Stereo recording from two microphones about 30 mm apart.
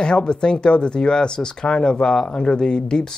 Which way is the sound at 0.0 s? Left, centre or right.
Left.